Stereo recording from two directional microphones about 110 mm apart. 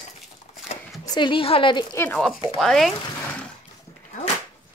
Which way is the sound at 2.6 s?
Centre (ahead or behind).